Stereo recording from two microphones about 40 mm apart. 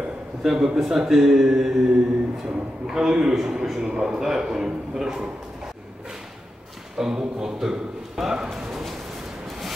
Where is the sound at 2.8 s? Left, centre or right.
Centre.